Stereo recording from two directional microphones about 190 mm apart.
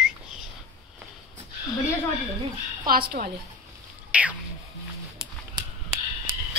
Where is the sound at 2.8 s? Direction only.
50° right (ahead or behind).